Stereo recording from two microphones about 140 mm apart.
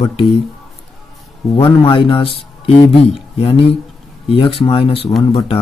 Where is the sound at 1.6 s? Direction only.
35° left (ahead or behind).